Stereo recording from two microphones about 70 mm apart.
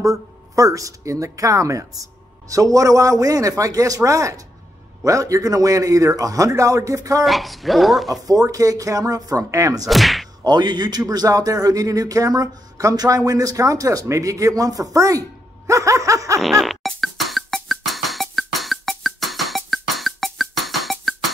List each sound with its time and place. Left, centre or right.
0.0 s a man's voice: right
7.2 s speech: centre
8.1 s speech: right
9.8 s whip: centre
10.4 s speech: right
16.3 s music: centre